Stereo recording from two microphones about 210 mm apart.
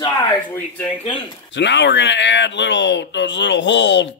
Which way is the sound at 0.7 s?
10° left (ahead or behind).